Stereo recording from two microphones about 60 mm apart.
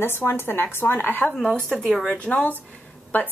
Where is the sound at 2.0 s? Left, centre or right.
Centre.